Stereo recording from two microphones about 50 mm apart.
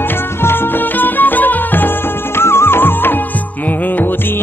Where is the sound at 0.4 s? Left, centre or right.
Left.